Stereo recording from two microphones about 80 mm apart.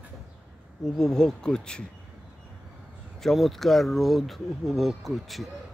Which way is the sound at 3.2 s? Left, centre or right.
Centre.